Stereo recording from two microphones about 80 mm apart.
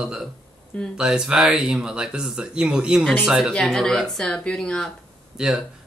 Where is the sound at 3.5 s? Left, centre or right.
Centre.